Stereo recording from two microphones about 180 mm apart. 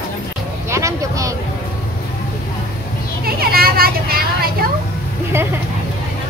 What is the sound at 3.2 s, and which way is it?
Children playing, 55° right (ahead or behind).